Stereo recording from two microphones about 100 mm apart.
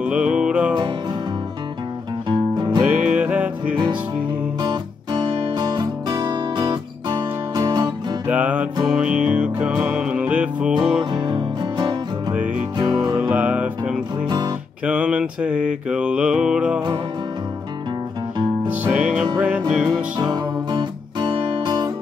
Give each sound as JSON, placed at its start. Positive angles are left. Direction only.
{"t": 0.0, "sound": "music", "side_deg": -10}
{"t": 2.2, "sound": "music", "side_deg": -50}
{"t": 2.8, "sound": "music", "side_deg": -10}
{"t": 4.6, "sound": "music", "side_deg": -35}
{"t": 5.2, "sound": "guitar", "side_deg": -50}
{"t": 8.3, "sound": "music", "side_deg": -15}
{"t": 11.1, "sound": "music", "side_deg": -45}
{"t": 13.1, "sound": "music", "side_deg": -10}
{"t": 14.2, "sound": "music", "side_deg": -40}
{"t": 14.9, "sound": "mantra", "side_deg": -10}
{"t": 18.7, "sound": "music", "side_deg": -15}
{"t": 20.7, "sound": "music", "side_deg": -55}